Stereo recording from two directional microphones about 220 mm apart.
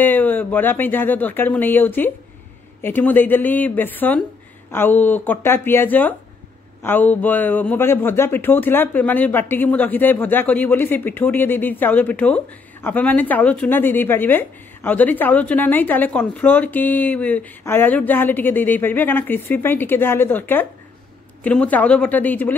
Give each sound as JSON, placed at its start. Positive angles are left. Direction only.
{"t": 0.0, "sound": "a woman's voice", "side_deg": 10}